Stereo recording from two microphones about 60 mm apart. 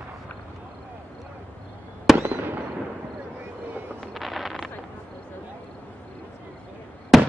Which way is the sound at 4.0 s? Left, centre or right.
Centre.